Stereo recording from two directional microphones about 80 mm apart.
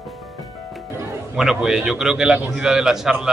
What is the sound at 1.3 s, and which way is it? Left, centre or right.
A man's voice, centre.